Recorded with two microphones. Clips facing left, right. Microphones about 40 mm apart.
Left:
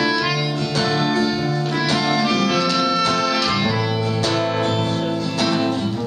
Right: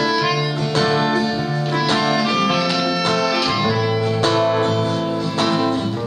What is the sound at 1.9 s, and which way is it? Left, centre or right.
Music, centre.